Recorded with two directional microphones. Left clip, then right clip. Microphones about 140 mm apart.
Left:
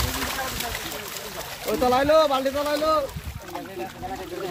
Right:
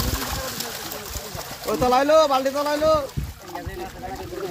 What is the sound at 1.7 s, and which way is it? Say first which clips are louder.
Speech: right 2 dB; 65° right (ahead or behind).